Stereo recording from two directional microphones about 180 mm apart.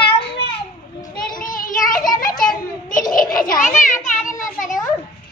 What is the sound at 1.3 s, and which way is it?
Child singing, 50° left (ahead or behind).